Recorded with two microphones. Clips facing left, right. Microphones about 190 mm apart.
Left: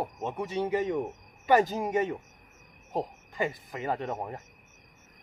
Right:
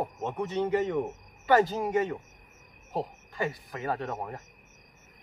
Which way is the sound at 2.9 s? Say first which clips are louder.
Left 1 dB; 15° left (ahead or behind).